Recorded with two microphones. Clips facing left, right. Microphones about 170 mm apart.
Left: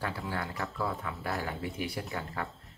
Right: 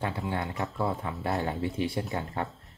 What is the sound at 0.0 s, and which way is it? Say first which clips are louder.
Speech: right 4 dB; 20° right (ahead or behind).